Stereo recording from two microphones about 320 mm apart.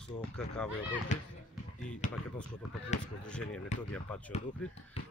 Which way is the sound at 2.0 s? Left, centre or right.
Left.